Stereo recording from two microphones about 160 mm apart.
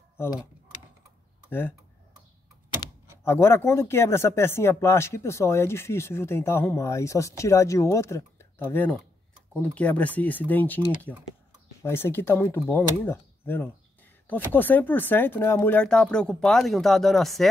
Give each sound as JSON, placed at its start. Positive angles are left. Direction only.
{"t": 0.2, "sound": "speech", "side_deg": 25}
{"t": 1.5, "sound": "speech", "side_deg": 15}
{"t": 2.8, "sound": "speech", "side_deg": 15}